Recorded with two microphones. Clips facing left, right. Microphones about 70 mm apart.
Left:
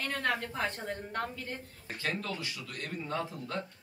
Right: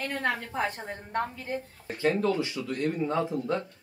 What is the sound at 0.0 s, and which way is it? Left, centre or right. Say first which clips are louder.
Speech: right 2 dB; centre.